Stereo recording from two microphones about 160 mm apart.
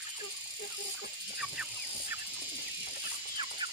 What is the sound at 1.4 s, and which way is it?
Chicken, 5° right (ahead or behind).